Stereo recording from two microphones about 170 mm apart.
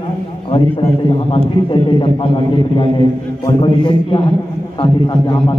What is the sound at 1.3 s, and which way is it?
Speech, 30° left (ahead or behind).